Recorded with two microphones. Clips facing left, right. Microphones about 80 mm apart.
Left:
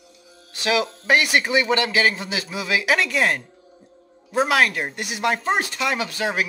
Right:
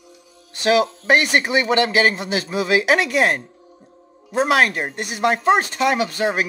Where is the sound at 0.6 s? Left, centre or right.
Right.